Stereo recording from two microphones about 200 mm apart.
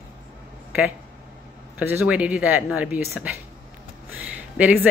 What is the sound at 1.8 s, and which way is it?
Speech, 5° right (ahead or behind).